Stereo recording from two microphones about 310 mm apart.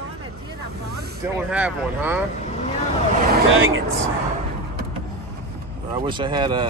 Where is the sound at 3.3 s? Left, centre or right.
Right.